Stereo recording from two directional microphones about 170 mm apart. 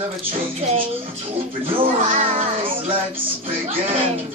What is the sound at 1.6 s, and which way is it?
Music, 30° right (ahead or behind).